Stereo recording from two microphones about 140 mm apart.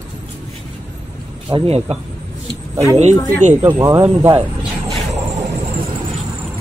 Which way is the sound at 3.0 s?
55° right (ahead or behind).